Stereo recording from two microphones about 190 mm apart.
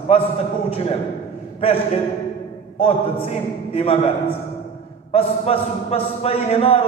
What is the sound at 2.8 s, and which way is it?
A man's voice, 30° left (ahead or behind).